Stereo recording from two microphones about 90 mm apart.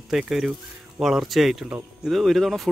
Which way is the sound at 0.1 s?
5° right (ahead or behind).